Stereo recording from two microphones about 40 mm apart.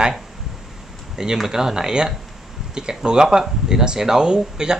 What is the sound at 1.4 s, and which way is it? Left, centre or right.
Speech, centre.